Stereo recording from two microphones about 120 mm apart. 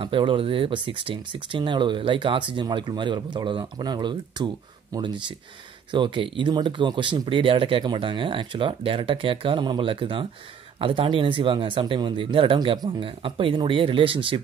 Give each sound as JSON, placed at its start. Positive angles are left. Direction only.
{"t": 0.0, "sound": "speech", "side_deg": -45}